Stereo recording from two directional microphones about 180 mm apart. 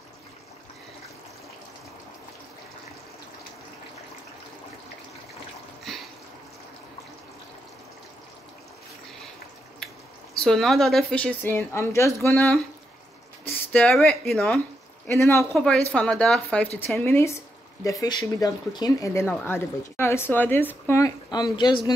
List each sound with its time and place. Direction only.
5.9 s a sound: centre (ahead or behind)
10.3 s a woman's voice: 5° left (ahead or behind)
15.0 s speech: 15° left (ahead or behind)
15.5 s speech: 5° left (ahead or behind)
18.0 s speech: 25° left (ahead or behind)